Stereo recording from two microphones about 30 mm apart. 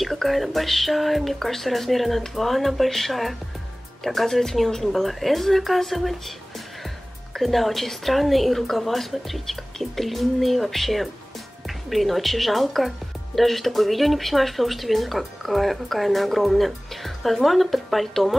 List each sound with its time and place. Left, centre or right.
0.0 s speech: centre
7.3 s speech: centre